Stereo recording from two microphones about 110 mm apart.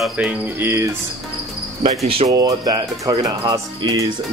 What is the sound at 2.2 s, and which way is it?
Speech, 35° right (ahead or behind).